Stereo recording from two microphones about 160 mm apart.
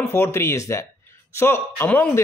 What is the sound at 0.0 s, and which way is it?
A man's voice, 15° left (ahead or behind).